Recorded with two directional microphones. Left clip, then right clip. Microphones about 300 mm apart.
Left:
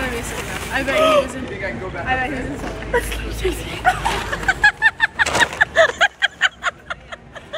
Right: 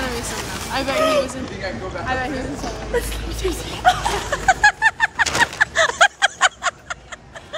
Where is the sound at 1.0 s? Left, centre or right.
Centre.